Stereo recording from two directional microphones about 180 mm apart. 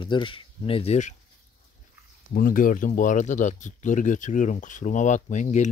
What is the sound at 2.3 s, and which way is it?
Speech, 50° left (ahead or behind).